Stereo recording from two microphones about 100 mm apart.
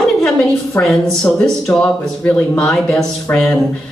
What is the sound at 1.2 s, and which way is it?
Speech, 5° left (ahead or behind).